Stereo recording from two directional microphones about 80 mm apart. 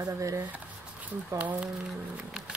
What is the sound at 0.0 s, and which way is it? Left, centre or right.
Speech, right.